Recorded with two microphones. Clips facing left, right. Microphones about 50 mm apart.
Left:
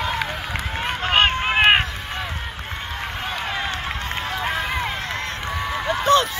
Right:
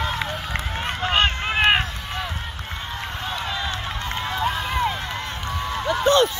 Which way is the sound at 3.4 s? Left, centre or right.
Left.